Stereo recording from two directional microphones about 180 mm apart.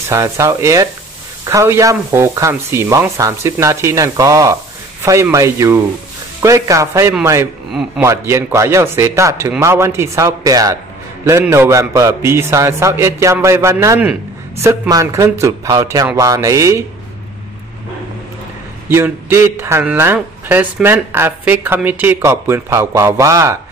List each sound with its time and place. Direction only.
0.1 s a man's voice: 15° right (ahead or behind)
18.9 s a man's voice: 10° right (ahead or behind)